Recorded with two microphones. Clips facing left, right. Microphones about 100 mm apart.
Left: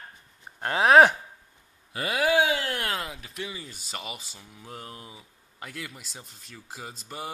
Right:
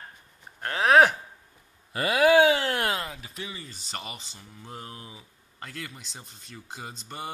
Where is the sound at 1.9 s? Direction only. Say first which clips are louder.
Right 5 dB; 75° right (ahead or behind).